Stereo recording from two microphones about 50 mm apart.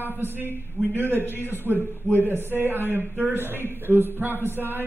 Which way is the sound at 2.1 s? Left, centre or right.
Right.